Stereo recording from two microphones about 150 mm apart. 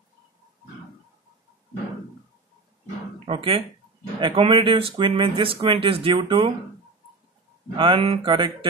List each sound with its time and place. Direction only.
3.3 s speech: 35° right (ahead or behind)
7.7 s speech: 35° right (ahead or behind)